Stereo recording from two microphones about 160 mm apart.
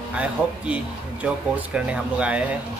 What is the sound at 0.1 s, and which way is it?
Speech, 5° right (ahead or behind).